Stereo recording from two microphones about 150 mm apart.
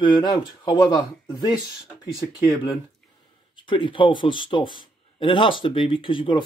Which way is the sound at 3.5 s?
35° left (ahead or behind).